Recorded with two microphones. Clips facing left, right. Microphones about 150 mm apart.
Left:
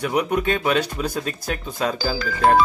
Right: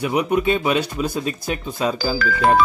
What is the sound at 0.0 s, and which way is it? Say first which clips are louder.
Speech: right 2 dB; 5° right (ahead or behind).